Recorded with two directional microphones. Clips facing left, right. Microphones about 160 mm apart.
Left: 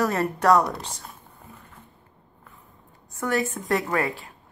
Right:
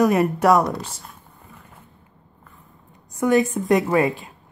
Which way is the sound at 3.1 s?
15° right (ahead or behind).